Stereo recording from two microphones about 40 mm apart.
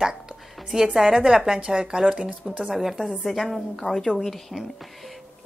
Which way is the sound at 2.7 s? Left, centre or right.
Centre.